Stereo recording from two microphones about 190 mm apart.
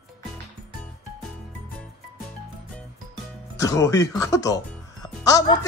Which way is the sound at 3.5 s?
15° left (ahead or behind).